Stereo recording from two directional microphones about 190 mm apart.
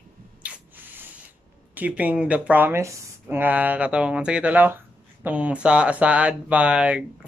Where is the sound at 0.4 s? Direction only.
10° right (ahead or behind).